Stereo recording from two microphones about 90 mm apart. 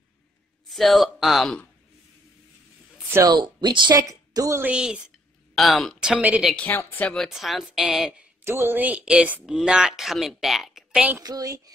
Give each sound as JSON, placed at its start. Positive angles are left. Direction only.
{"t": 0.7, "sound": "a woman's voice", "side_deg": 0}
{"t": 3.3, "sound": "speech", "side_deg": -60}
{"t": 4.1, "sound": "a woman's voice", "side_deg": -40}
{"t": 4.7, "sound": "speech", "side_deg": -10}
{"t": 6.5, "sound": "a woman's voice", "side_deg": 15}
{"t": 7.2, "sound": "a woman's voice", "side_deg": -5}
{"t": 8.5, "sound": "speech", "side_deg": -25}
{"t": 11.2, "sound": "speech", "side_deg": -40}